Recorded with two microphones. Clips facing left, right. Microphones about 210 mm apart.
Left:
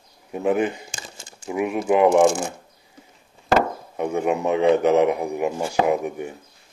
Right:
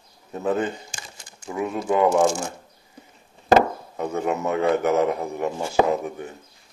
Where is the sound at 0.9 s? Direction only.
25° left (ahead or behind).